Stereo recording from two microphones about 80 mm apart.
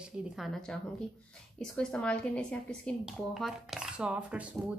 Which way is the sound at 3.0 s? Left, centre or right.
Centre.